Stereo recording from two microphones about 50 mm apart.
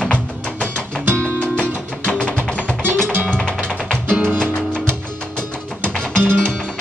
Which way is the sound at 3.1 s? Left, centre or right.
Right.